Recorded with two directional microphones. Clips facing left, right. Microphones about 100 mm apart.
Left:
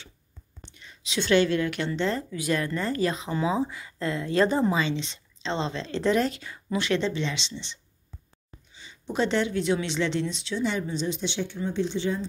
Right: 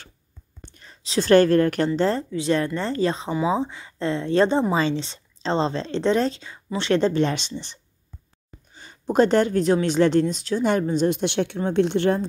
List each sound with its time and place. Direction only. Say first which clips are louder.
0.6 s a woman's voice: right 3 dB; 45° right (ahead or behind); by 12.3 s 60° right (ahead or behind)